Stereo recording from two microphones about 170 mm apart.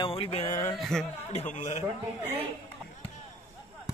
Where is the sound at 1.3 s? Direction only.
45° left (ahead or behind).